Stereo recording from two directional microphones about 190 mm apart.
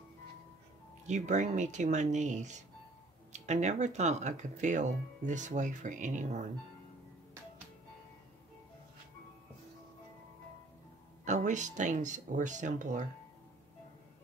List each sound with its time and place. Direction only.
1.0 s speech: 40° right (ahead or behind)
11.2 s speech: 40° right (ahead or behind)